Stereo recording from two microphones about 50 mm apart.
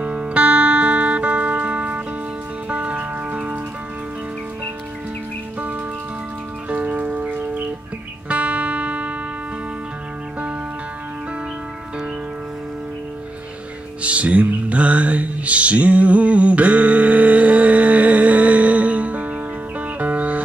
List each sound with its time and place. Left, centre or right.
0.0 s music: right
6.7 s music: right
14.0 s music: right